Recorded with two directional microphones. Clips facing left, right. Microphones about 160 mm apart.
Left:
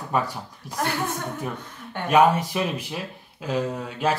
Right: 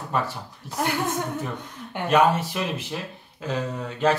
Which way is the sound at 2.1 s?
10° left (ahead or behind).